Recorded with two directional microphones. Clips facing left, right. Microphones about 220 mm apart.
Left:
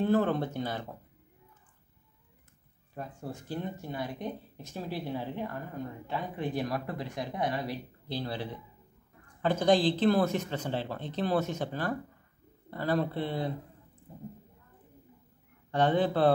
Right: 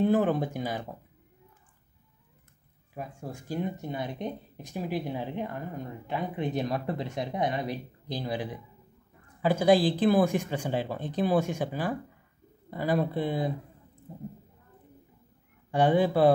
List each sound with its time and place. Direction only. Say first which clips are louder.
0.0 s speech: right 2 dB; 15° right (ahead or behind)
3.2 s speech: right 4 dB; 10° right (ahead or behind)
14.1 s speech: right 4 dB; 25° right (ahead or behind)
15.7 s speech: right 3 dB; 10° right (ahead or behind)